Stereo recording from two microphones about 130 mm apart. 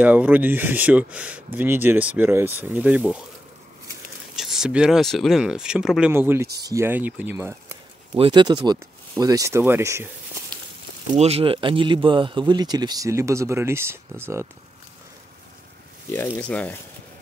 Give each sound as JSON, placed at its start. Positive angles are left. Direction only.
{"t": 0.0, "sound": "speech", "side_deg": -15}
{"t": 4.4, "sound": "speech", "side_deg": -5}
{"t": 6.1, "sound": "speech", "side_deg": -20}
{"t": 8.1, "sound": "speech", "side_deg": -35}
{"t": 11.1, "sound": "speech", "side_deg": -50}
{"t": 16.1, "sound": "speech", "side_deg": 15}